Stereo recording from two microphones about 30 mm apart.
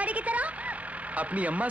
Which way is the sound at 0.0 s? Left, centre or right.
Right.